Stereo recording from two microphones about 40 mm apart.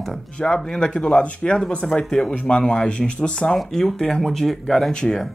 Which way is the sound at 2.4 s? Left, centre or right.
Left.